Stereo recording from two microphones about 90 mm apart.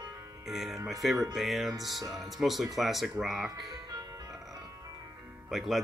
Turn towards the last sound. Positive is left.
turn(degrees=0)  # may be behind; listen again after turning